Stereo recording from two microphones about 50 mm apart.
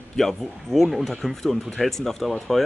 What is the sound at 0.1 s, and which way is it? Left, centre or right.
A man's voice, centre.